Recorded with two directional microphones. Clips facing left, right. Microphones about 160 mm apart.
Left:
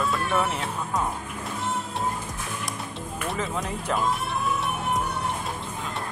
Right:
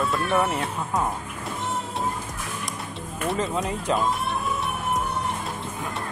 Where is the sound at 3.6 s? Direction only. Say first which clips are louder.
Right 2 dB; centre (ahead or behind).